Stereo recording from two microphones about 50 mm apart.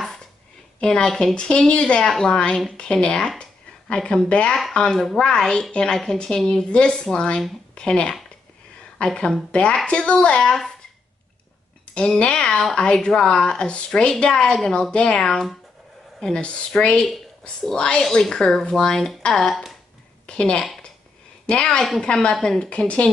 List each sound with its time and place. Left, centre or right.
1.0 s speech: centre
1.3 s a woman's voice: left
11.9 s a woman's voice: left
16.3 s a woman's voice: left
19.5 s speech: centre
20.2 s a woman's voice: left
22.6 s a woman's voice: left